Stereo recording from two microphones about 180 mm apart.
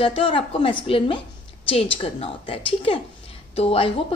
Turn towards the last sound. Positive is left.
turn(degrees=35)  # may be behind; listen again after turning